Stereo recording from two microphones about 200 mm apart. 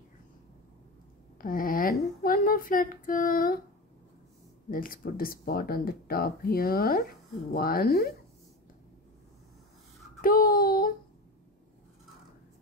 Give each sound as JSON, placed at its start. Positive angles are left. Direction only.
{"t": 1.4, "sound": "a sound", "side_deg": 45}
{"t": 4.6, "sound": "speech", "side_deg": 45}
{"t": 10.2, "sound": "child singing", "side_deg": 45}